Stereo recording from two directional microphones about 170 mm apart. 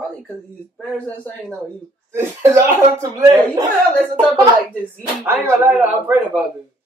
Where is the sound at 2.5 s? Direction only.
20° right (ahead or behind).